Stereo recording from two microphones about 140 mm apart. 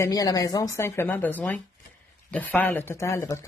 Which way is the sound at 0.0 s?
25° left (ahead or behind).